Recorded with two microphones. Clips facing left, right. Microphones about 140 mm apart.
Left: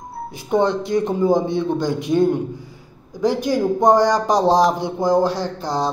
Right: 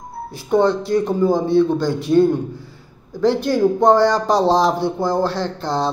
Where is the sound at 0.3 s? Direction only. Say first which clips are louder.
Right 2 dB; 20° left (ahead or behind).